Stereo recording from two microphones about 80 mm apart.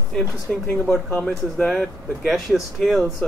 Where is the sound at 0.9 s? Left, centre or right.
Centre.